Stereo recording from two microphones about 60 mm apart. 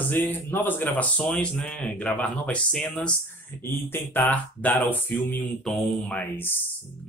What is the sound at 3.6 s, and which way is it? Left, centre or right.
Speech, left.